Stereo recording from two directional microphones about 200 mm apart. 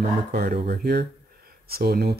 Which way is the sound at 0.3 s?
50° right (ahead or behind).